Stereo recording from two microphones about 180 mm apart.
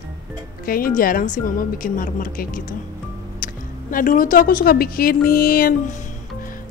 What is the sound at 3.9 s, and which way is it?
Speech, 50° left (ahead or behind).